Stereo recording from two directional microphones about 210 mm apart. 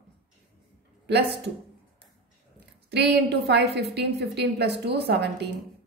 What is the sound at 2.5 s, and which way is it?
A woman's voice, 50° right (ahead or behind).